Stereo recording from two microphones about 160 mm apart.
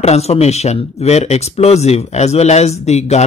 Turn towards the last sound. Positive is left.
turn(degrees=45)  # may be behind; listen again after turning